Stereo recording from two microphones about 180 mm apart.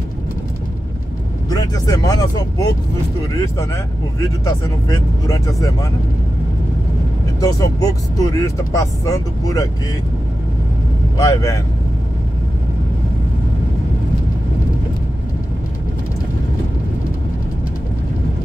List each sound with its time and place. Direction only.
1.5 s speech: 20° left (ahead or behind)
7.3 s speech: 20° left (ahead or behind)
11.1 s speech: 20° left (ahead or behind)